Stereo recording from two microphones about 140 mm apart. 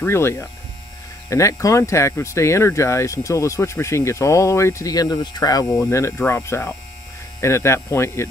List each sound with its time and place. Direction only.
0.0 s speech: 20° left (ahead or behind)